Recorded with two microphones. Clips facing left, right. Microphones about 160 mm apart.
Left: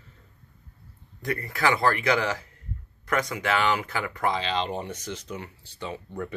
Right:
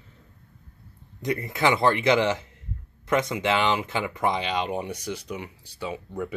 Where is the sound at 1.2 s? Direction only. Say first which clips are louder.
Right 2 dB; 20° right (ahead or behind).